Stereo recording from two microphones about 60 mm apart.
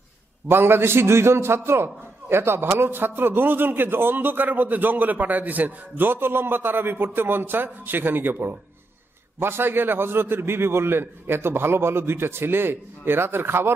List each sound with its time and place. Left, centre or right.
0.5 s a man's voice: right